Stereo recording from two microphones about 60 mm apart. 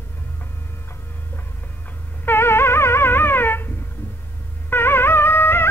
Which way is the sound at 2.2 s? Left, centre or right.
Left.